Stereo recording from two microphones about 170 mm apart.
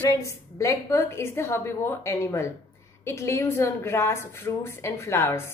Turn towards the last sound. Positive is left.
turn(degrees=15)  # may be behind; listen again after turning